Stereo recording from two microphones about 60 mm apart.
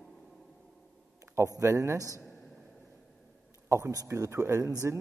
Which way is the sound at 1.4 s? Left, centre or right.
Right.